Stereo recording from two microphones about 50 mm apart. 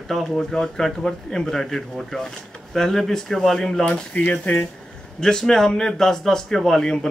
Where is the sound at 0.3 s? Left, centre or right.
Centre.